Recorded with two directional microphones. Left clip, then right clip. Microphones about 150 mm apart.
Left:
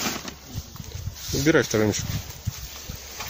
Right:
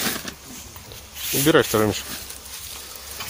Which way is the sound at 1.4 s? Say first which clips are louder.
Right 3 dB; 10° left (ahead or behind).